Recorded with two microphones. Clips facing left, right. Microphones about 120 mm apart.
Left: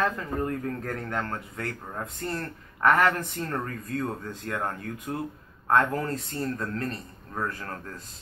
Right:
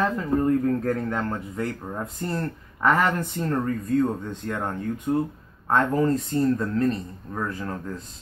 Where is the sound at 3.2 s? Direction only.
Centre (ahead or behind).